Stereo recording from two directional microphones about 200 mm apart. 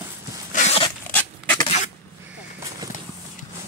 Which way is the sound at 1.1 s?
10° left (ahead or behind).